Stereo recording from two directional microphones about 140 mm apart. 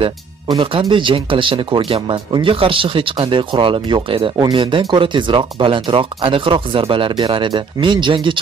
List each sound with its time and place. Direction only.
0.0 s speech: 35° right (ahead or behind)